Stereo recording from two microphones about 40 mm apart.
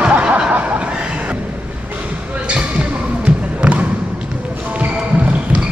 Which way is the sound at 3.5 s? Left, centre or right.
Right.